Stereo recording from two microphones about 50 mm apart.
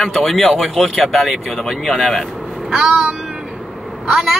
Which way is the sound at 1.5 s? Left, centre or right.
Centre.